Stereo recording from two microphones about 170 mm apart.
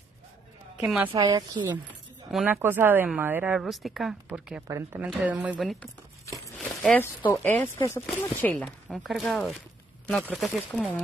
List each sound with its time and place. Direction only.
0.7 s speech: 5° right (ahead or behind)
1.1 s speech: 20° right (ahead or behind)
2.3 s speech: 10° right (ahead or behind)